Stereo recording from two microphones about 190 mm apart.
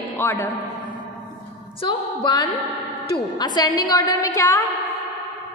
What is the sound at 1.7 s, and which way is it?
A woman's voice, 25° left (ahead or behind).